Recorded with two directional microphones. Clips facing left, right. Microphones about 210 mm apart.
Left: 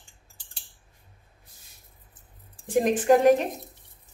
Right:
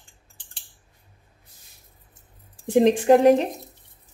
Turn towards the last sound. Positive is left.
turn(degrees=-25)  # may be behind; listen again after turning